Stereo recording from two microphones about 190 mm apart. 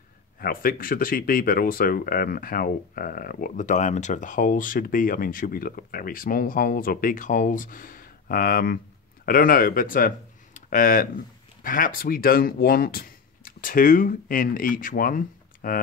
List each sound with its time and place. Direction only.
0.4 s speech: 50° left (ahead or behind)